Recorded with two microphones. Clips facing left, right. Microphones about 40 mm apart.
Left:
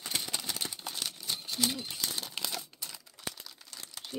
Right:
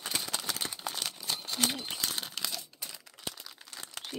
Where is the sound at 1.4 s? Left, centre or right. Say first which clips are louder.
Right 1 dB; right.